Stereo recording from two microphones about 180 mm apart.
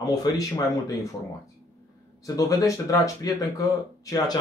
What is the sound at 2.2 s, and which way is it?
Speech, 20° left (ahead or behind).